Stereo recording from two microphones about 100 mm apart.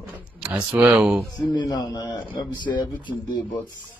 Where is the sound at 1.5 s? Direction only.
45° left (ahead or behind).